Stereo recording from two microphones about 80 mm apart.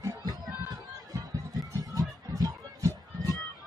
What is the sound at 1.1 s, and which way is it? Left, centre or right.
Music, right.